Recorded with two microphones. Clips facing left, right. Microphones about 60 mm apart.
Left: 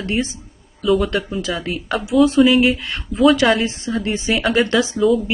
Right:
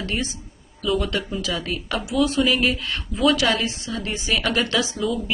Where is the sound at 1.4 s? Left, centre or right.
Left.